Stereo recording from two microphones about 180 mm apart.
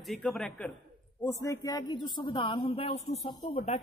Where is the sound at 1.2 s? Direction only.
20° left (ahead or behind).